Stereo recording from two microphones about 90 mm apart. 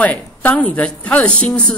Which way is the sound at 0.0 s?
15° left (ahead or behind).